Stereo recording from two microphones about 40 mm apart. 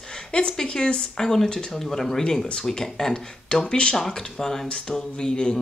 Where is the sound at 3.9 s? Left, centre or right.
Centre.